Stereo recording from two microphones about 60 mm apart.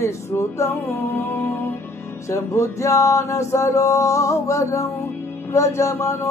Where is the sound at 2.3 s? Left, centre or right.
Left.